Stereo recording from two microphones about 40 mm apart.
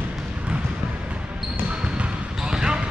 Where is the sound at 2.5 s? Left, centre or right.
Right.